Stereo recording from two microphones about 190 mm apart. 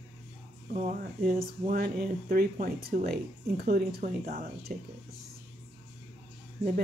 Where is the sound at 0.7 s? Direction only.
40° right (ahead or behind).